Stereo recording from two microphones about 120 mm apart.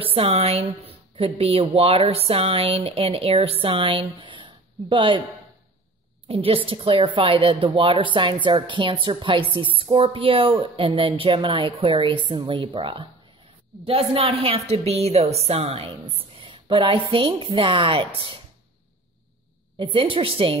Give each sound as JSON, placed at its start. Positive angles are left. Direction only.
{"t": 0.0, "sound": "a woman's voice", "side_deg": -50}
{"t": 6.2, "sound": "a woman's voice", "side_deg": -50}
{"t": 13.8, "sound": "a woman's voice", "side_deg": -55}
{"t": 19.8, "sound": "a woman's voice", "side_deg": -45}